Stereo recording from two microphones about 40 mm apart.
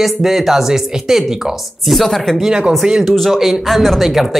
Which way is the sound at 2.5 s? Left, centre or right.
Right.